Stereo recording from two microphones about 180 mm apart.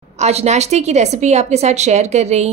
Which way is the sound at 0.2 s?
35° right (ahead or behind).